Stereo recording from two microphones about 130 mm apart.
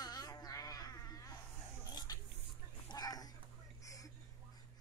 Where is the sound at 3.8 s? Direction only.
25° left (ahead or behind).